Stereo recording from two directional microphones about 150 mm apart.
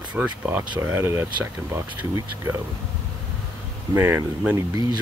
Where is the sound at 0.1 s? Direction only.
10° right (ahead or behind).